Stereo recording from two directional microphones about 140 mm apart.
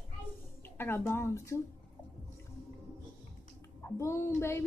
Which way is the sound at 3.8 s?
20° left (ahead or behind).